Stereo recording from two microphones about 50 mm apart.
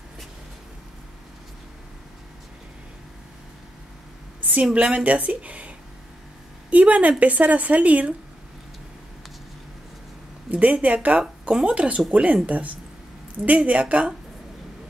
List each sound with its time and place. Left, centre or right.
4.4 s a sound: right
4.7 s speech: right
6.7 s speech: right
10.5 s a woman's voice: right